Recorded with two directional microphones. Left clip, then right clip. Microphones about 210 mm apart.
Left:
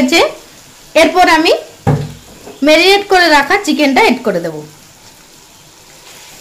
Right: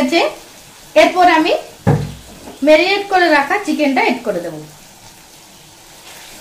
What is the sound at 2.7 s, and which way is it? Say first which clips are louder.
Frying: left 3 dB; 50° left (ahead or behind).